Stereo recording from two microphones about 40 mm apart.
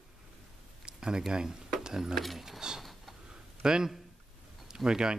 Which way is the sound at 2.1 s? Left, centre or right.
Centre.